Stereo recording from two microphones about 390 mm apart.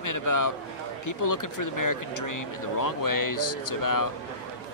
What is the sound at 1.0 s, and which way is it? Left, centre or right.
Speech, left.